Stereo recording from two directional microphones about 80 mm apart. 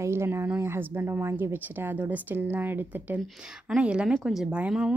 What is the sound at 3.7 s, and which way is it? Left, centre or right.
A woman's voice, centre.